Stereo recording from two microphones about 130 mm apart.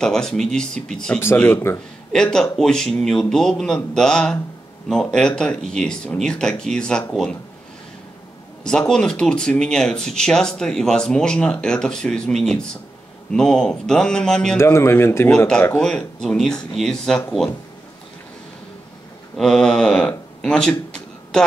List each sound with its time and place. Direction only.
0.0 s speech: 5° left (ahead or behind)
1.2 s speech: 15° left (ahead or behind)
2.1 s speech: 5° left (ahead or behind)
8.6 s speech: 5° left (ahead or behind)
14.6 s a man's voice: 20° left (ahead or behind)
15.3 s speech: 5° left (ahead or behind)
19.3 s speech: 5° left (ahead or behind)